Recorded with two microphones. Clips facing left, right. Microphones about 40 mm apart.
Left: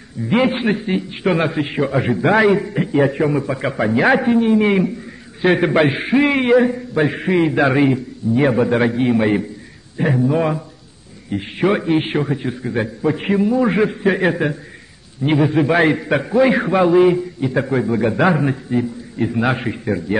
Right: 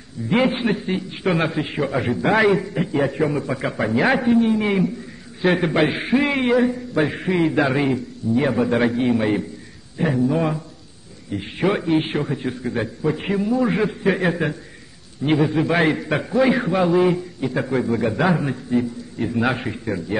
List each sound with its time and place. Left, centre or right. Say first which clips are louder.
0.3 s a man's voice: left 2 dB; centre